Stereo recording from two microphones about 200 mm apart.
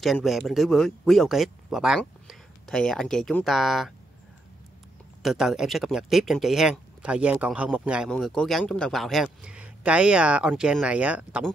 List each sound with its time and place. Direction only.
0.0 s speech: centre (ahead or behind)
5.2 s speech: centre (ahead or behind)